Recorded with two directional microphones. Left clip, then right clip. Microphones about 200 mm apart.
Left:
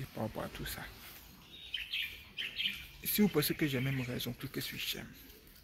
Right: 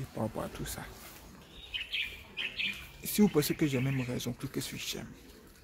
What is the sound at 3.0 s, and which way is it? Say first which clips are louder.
Speech: right 3 dB; 10° right (ahead or behind).